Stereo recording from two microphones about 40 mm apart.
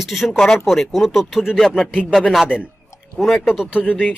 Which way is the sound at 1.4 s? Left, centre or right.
Centre.